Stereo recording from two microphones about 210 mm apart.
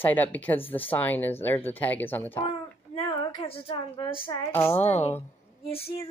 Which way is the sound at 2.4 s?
25° left (ahead or behind).